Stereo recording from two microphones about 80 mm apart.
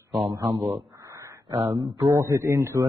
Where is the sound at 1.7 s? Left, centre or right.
Right.